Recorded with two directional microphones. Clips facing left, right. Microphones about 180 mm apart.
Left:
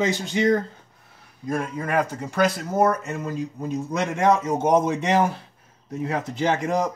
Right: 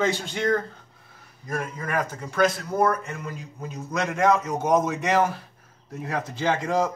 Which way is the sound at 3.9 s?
30° left (ahead or behind).